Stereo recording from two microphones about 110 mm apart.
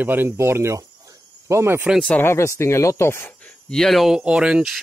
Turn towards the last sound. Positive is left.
turn(degrees=-10)  # may be behind; listen again after turning